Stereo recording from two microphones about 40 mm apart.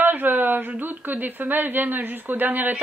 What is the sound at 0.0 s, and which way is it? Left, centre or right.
Speech, right.